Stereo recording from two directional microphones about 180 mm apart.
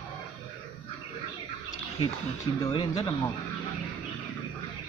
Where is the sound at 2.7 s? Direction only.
25° left (ahead or behind).